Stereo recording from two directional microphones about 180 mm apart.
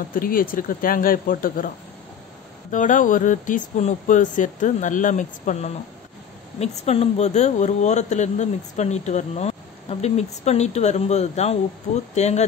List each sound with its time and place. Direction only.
0.1 s speech: 50° left (ahead or behind)
2.7 s a woman's voice: 45° left (ahead or behind)